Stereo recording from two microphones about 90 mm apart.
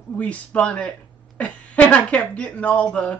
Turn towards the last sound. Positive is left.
turn(degrees=15)  # may be behind; listen again after turning